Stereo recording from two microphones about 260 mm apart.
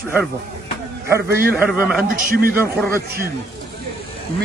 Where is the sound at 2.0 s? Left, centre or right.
Right.